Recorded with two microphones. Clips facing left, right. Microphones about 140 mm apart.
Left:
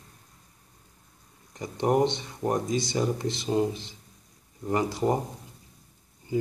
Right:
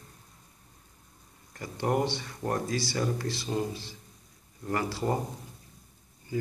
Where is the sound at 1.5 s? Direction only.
20° left (ahead or behind).